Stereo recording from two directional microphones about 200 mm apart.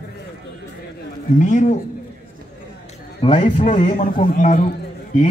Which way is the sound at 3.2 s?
30° left (ahead or behind).